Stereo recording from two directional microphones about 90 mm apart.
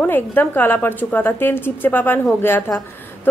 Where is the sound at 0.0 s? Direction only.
20° left (ahead or behind).